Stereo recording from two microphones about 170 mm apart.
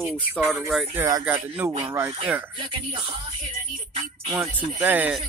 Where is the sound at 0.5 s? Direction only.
Centre (ahead or behind).